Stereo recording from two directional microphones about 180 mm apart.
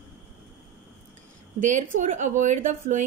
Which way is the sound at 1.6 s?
45° right (ahead or behind).